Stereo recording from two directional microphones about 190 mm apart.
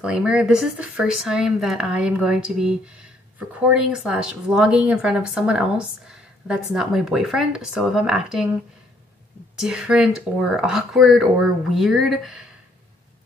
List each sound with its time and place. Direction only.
0.0 s speech: 5° right (ahead or behind)
9.6 s speech: 5° right (ahead or behind)